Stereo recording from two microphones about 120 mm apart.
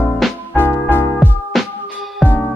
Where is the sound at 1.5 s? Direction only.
Centre (ahead or behind).